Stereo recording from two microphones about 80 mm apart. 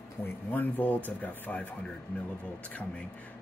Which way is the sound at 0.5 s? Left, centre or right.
Left.